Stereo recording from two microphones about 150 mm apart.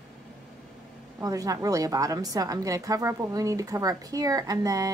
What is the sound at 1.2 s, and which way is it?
A woman's voice, 25° right (ahead or behind).